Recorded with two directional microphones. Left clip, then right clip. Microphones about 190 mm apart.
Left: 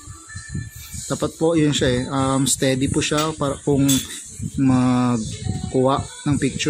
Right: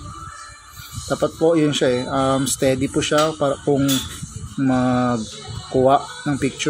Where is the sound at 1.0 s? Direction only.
40° left (ahead or behind).